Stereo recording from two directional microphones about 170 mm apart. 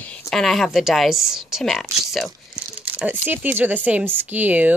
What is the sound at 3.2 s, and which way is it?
Speech, 10° right (ahead or behind).